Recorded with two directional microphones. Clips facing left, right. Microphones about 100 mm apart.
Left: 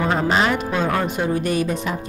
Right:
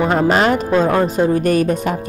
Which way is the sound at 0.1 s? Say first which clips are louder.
Right 4 dB; 45° right (ahead or behind).